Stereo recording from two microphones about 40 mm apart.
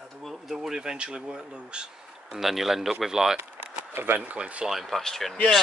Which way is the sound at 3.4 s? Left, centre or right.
Right.